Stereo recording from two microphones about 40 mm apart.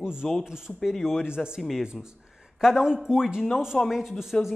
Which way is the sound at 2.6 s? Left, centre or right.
Centre.